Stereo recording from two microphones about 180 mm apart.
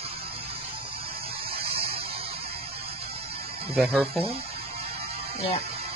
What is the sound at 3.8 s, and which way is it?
Speech, centre (ahead or behind).